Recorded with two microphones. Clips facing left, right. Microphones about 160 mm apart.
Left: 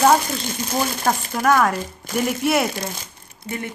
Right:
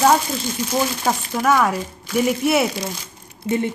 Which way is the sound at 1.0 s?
Centre (ahead or behind).